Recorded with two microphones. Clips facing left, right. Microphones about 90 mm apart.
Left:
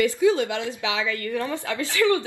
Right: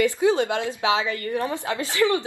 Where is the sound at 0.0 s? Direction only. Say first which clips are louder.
Even; 25° right (ahead or behind).